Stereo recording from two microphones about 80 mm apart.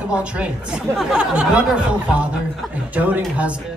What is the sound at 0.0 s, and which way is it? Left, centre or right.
A man's voice, centre.